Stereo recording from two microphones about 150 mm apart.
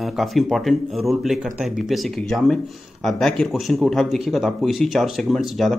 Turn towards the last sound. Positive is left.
turn(degrees=0)  # may be behind; listen again after turning